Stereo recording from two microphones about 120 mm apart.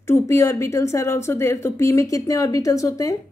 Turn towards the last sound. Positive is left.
turn(degrees=30)  # may be behind; listen again after turning